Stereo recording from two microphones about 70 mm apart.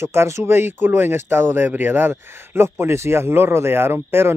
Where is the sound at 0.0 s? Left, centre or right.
Right.